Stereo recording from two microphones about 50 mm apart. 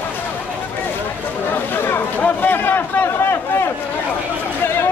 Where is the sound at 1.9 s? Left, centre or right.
Left.